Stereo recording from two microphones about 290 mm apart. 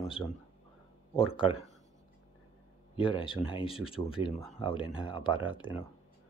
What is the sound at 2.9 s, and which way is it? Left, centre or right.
Speech, centre.